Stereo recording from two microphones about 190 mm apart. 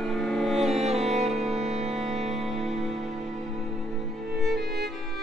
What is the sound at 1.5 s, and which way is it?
Music, 35° right (ahead or behind).